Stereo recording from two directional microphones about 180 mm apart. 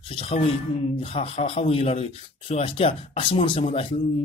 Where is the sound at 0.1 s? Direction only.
30° left (ahead or behind).